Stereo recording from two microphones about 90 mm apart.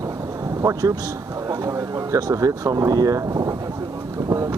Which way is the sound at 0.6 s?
40° right (ahead or behind).